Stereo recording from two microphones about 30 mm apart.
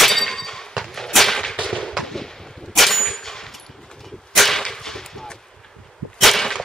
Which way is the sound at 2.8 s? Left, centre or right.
Centre.